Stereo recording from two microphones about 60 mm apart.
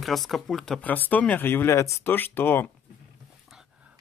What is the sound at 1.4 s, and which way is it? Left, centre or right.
Speech, left.